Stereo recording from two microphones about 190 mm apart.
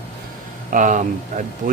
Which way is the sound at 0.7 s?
40° right (ahead or behind).